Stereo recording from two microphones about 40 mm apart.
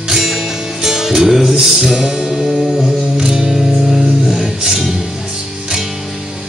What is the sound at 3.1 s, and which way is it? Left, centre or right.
Music, centre.